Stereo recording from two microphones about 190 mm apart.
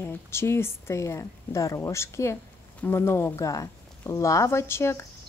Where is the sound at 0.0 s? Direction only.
15° left (ahead or behind).